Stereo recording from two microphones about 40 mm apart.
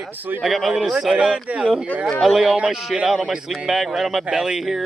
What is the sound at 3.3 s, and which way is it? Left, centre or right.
Speech, centre.